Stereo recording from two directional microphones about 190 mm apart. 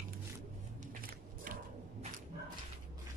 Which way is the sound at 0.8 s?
50° right (ahead or behind).